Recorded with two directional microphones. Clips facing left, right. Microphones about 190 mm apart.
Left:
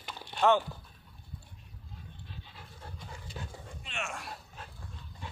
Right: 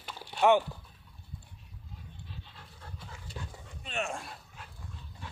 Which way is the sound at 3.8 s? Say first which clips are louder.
Right 5 dB; 35° right (ahead or behind).